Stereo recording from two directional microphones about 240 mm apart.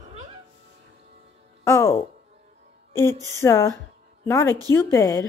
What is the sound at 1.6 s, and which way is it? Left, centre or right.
Speech, centre.